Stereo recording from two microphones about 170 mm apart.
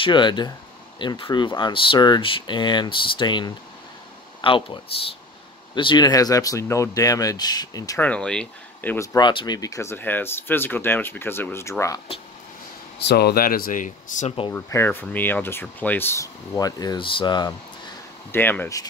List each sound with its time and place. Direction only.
0.0 s speech: 25° left (ahead or behind)
8.0 s speech: 5° left (ahead or behind)
8.9 s speech: 20° left (ahead or behind)
13.0 s speech: 70° left (ahead or behind); by 14.3 s 45° left (ahead or behind)
14.5 s speech: 15° left (ahead or behind)
18.3 s speech: 10° left (ahead or behind)